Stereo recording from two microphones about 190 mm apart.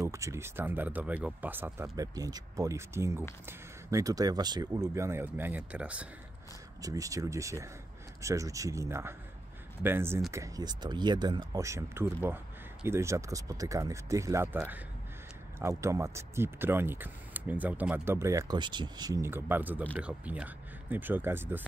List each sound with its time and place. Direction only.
0.0 s speech: 15° right (ahead or behind)
6.8 s speech: 15° right (ahead or behind)
15.8 s speech: 15° right (ahead or behind)